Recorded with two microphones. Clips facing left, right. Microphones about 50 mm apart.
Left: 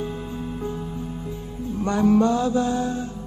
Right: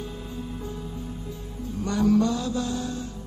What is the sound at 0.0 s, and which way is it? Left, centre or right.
Music, left.